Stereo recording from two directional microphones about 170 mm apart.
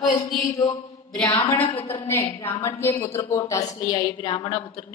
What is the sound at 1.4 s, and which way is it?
A woman's voice, 10° left (ahead or behind).